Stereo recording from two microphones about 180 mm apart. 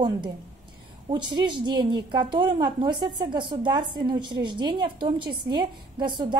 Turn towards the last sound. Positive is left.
turn(degrees=-25)  # may be behind; listen again after turning